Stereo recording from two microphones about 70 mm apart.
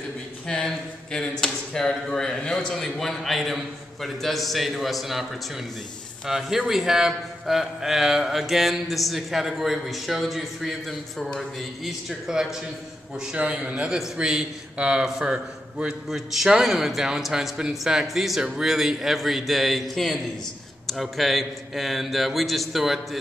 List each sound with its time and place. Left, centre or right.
0.5 s a man's voice: centre